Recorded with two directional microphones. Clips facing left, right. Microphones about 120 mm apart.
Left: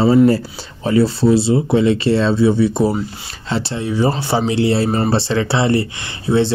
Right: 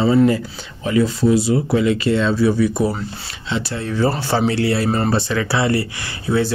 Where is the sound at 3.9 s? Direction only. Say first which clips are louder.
Left 1 dB; 15° left (ahead or behind).